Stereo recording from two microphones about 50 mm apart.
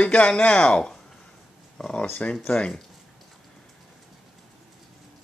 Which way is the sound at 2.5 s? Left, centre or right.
Left.